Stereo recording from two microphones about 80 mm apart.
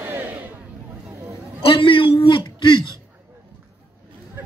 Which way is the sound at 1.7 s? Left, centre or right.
Left.